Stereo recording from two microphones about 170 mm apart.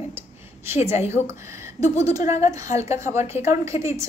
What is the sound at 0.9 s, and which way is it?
Speech, 40° left (ahead or behind).